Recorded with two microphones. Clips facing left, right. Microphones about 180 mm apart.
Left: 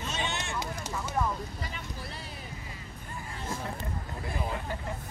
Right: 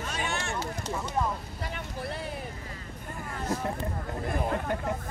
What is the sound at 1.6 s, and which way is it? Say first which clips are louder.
Vehicle: right 4 dB; 55° right (ahead or behind).